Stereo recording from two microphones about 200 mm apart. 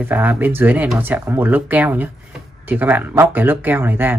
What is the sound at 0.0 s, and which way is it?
Speech, 10° right (ahead or behind).